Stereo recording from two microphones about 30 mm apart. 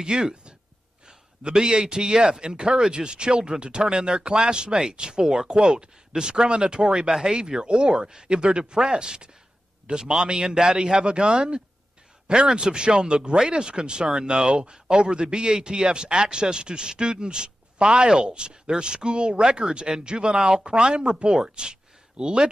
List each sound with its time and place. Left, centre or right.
0.3 s a sound: right
1.5 s a man's voice: right
7.1 s a man's voice: centre